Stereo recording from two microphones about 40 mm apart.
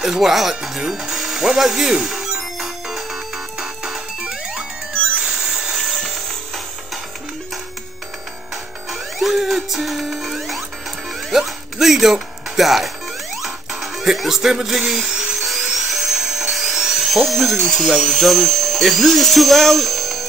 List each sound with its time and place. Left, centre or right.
0.0 s music: centre
5.2 s a sound: centre
5.5 s music: centre
8.9 s music: centre
11.3 s speech: centre
13.4 s music: centre
15.7 s dental drill: centre
17.9 s speech: centre